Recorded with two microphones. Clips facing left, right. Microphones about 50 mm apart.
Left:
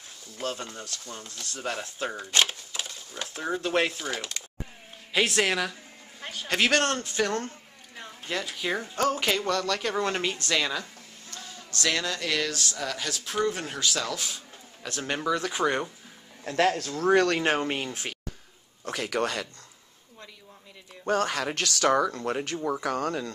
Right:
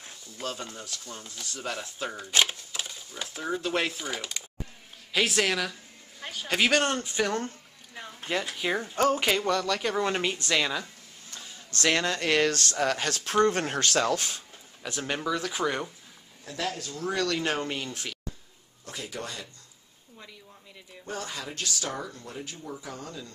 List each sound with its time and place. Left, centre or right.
0.4 s speech: centre
0.8 s speech: centre
1.6 s speech: centre
5.4 s speech: centre
8.5 s speech: centre
11.7 s speech: right
13.9 s speech: right
14.8 s speech: centre
16.4 s a man's voice: left
18.9 s speech: left
21.0 s speech: left